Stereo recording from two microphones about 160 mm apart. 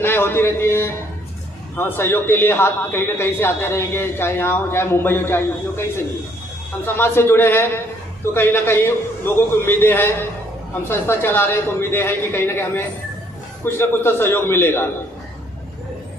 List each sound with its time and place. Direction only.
0.0 s a man's voice: 15° left (ahead or behind)
7.0 s a man's voice: 15° left (ahead or behind)